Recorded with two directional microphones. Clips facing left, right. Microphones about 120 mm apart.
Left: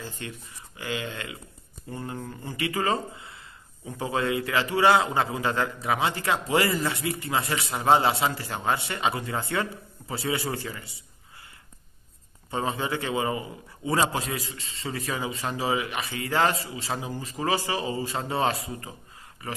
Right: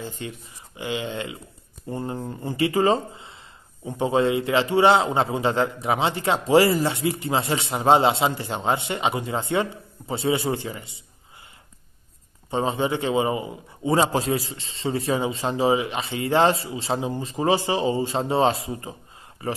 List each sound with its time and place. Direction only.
0.0 s a man's voice: 20° right (ahead or behind)
12.4 s a man's voice: 25° right (ahead or behind)